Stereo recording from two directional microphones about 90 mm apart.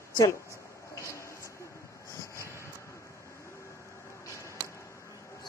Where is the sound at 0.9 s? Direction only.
30° left (ahead or behind).